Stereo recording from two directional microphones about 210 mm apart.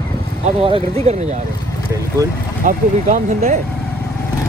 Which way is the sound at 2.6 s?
40° right (ahead or behind).